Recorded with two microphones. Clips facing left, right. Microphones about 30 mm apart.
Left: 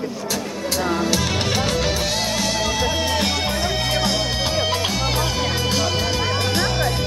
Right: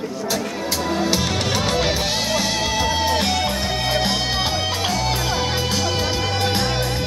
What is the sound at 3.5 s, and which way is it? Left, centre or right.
Music, centre.